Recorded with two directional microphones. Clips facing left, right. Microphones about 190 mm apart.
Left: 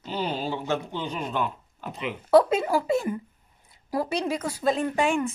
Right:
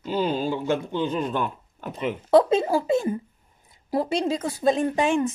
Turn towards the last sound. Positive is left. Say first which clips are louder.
# right 2 dB
turn(degrees=-20)  # may be behind; listen again after turning